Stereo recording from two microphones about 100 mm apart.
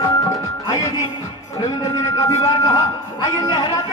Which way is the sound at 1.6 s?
35° left (ahead or behind).